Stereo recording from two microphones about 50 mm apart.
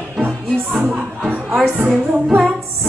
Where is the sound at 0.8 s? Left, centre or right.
Centre.